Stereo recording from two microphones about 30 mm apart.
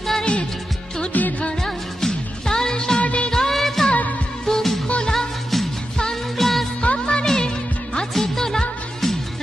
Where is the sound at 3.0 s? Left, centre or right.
Left.